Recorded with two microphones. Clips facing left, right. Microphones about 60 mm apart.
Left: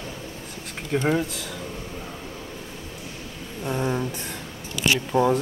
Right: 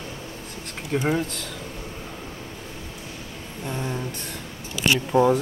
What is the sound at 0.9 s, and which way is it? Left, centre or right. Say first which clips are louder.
Speech: left 1 dB; centre.